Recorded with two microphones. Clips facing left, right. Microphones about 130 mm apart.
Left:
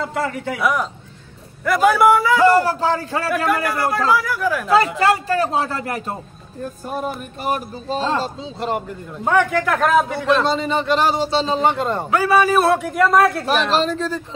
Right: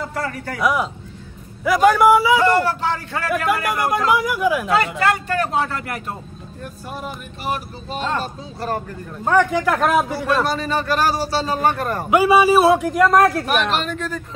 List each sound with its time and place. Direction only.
0.1 s a man's voice: 20° left (ahead or behind)
0.6 s a man's voice: centre (ahead or behind)
2.4 s a man's voice: 35° left (ahead or behind)
4.2 s speech: 15° right (ahead or behind)
4.6 s a man's voice: 35° left (ahead or behind)
9.2 s a man's voice: 10° left (ahead or behind)
10.4 s a man's voice: 20° left (ahead or behind)
12.1 s a man's voice: 15° right (ahead or behind)
13.7 s a man's voice: 35° left (ahead or behind)